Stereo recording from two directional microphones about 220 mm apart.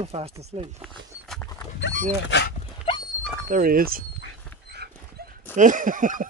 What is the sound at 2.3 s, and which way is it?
Speech, 55° left (ahead or behind).